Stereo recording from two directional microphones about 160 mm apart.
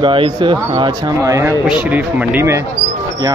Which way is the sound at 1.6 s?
10° right (ahead or behind).